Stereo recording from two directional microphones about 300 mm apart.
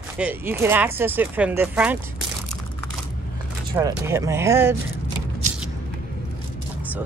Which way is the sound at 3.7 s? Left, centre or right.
Centre.